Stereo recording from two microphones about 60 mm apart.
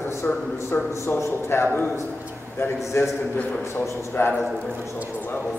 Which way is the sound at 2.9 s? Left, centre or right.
Left.